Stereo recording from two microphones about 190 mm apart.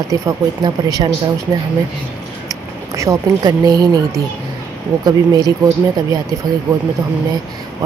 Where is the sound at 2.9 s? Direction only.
15° right (ahead or behind).